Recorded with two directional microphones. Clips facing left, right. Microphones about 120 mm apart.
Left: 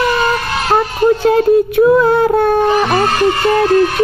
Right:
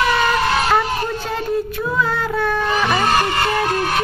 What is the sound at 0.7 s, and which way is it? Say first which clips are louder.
Speech: left 7 dB; 55° left (ahead or behind).